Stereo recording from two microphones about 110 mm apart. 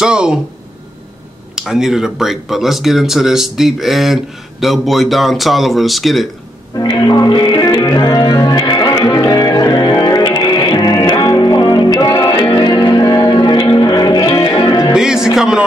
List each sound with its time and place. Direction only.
0.0 s speech: 10° right (ahead or behind)
1.5 s speech: 5° right (ahead or behind)
6.8 s music: 40° left (ahead or behind)
15.0 s music: 5° right (ahead or behind)